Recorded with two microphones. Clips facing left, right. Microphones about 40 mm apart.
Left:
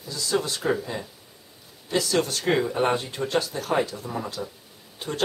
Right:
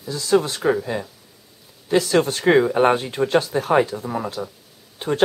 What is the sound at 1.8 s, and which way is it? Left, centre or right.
Speech, right.